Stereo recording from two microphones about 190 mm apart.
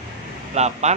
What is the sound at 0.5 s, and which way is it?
Speech, 35° right (ahead or behind).